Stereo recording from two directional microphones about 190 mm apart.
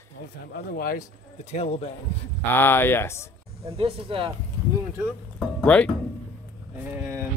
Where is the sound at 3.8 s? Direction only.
30° right (ahead or behind).